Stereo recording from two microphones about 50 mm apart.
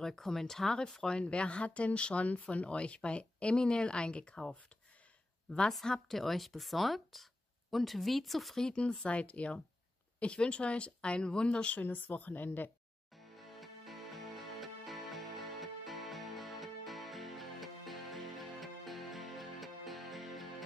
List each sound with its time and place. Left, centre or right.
0.0 s speech: centre
1.1 s speech: left
5.7 s speech: centre
8.5 s speech: centre
11.8 s a woman's voice: left
13.3 s music: centre